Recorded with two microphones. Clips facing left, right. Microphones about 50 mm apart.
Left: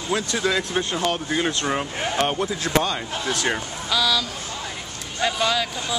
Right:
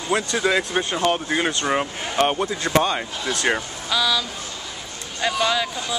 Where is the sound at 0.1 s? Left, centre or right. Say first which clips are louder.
Right 2 dB; centre.